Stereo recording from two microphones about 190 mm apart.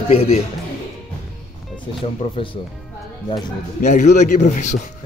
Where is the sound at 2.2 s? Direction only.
30° left (ahead or behind).